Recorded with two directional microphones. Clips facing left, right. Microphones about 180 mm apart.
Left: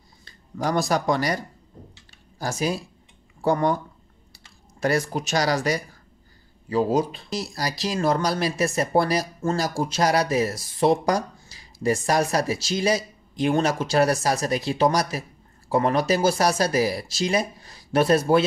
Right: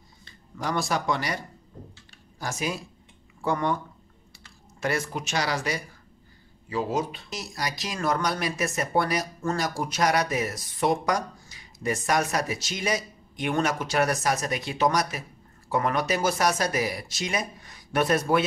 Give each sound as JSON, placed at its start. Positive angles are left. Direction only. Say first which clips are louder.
{"t": 0.2, "sound": "speech", "louder": "left 6 dB", "side_deg": 40}